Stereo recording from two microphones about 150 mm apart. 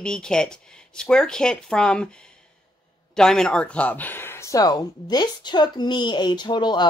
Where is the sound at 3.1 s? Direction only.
5° left (ahead or behind).